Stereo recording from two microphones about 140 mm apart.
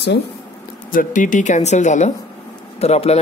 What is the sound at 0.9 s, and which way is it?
Speech, 65° left (ahead or behind).